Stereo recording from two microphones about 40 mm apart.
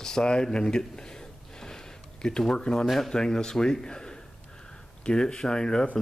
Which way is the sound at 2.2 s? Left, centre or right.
Centre.